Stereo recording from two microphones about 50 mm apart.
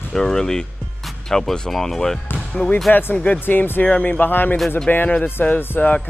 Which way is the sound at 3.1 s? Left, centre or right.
Left.